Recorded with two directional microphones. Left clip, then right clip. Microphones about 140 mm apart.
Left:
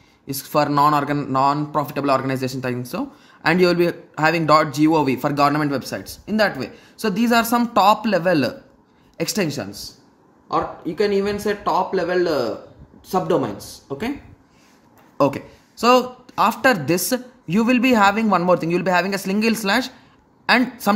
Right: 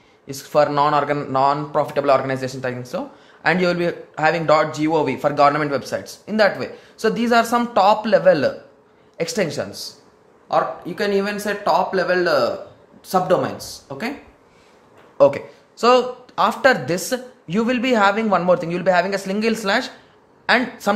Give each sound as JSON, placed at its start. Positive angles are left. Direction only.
{"t": 0.3, "sound": "speech", "side_deg": 45}
{"t": 10.5, "sound": "speech", "side_deg": 10}
{"t": 15.1, "sound": "speech", "side_deg": 40}